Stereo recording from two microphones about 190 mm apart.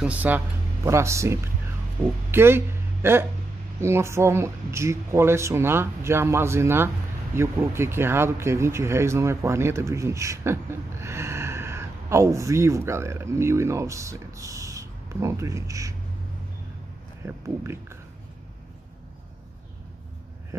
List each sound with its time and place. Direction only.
0.0 s speech: 10° right (ahead or behind)
17.2 s speech: 15° right (ahead or behind)